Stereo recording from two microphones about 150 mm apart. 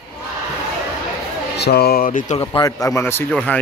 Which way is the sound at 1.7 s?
90° left.